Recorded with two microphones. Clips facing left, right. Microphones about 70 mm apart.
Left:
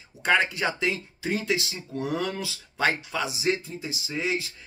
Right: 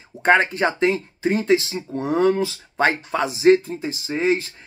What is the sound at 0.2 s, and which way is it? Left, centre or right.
Speech, right.